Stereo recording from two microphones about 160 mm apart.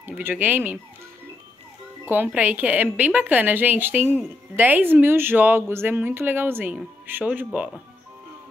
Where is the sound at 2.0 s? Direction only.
10° right (ahead or behind).